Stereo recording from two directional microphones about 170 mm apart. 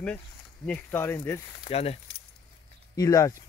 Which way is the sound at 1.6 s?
35° left (ahead or behind).